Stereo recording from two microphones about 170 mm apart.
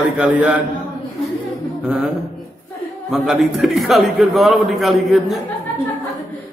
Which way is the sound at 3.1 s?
Centre (ahead or behind).